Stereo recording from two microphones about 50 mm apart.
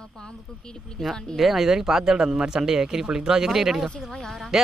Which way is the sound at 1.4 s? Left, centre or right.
Centre.